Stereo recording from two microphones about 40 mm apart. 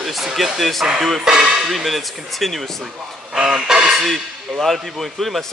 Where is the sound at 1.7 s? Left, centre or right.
Centre.